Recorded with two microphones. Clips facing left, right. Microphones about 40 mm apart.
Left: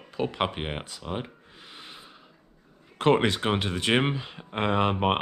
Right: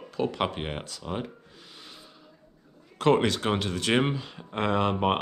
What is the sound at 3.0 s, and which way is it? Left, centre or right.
Speech, left.